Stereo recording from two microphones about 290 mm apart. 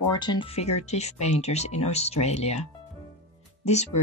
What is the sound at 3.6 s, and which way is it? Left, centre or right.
Speech, left.